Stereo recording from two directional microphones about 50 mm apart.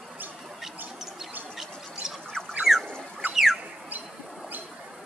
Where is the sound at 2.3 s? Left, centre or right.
Centre.